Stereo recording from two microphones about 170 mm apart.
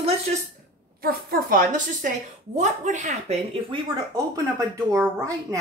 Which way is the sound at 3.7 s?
20° right (ahead or behind).